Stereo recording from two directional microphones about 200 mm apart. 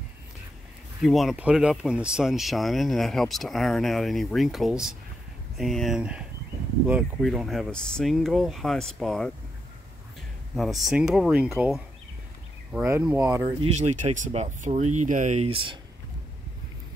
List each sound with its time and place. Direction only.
1.0 s speech: centre (ahead or behind)
10.5 s speech: centre (ahead or behind)
13.6 s speech: 35° right (ahead or behind)